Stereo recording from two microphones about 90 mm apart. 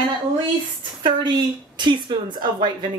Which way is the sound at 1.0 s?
55° right (ahead or behind).